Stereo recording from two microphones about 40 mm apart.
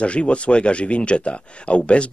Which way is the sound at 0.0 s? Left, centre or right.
Left.